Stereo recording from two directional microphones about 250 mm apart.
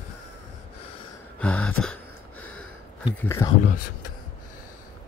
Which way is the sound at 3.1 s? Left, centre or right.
Centre.